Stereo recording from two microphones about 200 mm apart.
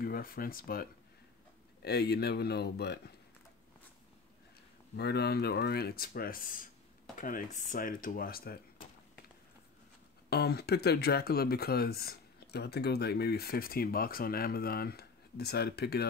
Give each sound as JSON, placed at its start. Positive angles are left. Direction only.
{"t": 0.0, "sound": "speech", "side_deg": 45}
{"t": 4.9, "sound": "speech", "side_deg": 55}
{"t": 10.3, "sound": "speech", "side_deg": 55}